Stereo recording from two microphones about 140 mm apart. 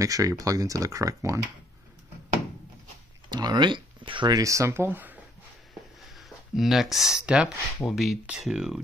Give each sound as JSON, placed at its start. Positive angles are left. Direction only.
{"t": 0.0, "sound": "speech", "side_deg": -25}
{"t": 3.3, "sound": "speech", "side_deg": -30}
{"t": 6.1, "sound": "speech", "side_deg": 0}